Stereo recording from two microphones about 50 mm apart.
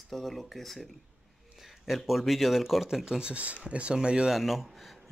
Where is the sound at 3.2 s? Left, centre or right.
Right.